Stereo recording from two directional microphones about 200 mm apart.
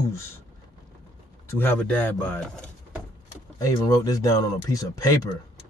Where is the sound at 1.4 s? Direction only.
10° left (ahead or behind).